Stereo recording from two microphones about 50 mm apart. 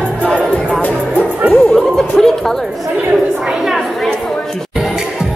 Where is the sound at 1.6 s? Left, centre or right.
Centre.